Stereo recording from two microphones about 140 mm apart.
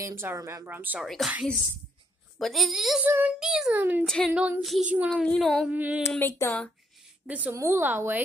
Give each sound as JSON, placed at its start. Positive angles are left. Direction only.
{"t": 0.0, "sound": "speech", "side_deg": -15}
{"t": 0.7, "sound": "female singing", "side_deg": -10}
{"t": 1.0, "sound": "a woman's voice", "side_deg": 0}
{"t": 2.3, "sound": "a woman's voice", "side_deg": 0}
{"t": 3.1, "sound": "female singing", "side_deg": -15}
{"t": 3.3, "sound": "a woman's voice", "side_deg": -5}
{"t": 4.0, "sound": "a woman's voice", "side_deg": 5}
{"t": 4.3, "sound": "female singing", "side_deg": -10}
{"t": 5.1, "sound": "a woman's voice", "side_deg": 5}
{"t": 5.7, "sound": "female singing", "side_deg": -10}
{"t": 6.0, "sound": "speech", "side_deg": 15}
{"t": 7.2, "sound": "female singing", "side_deg": -10}